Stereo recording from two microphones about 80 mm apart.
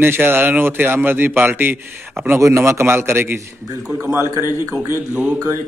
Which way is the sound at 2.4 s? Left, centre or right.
Right.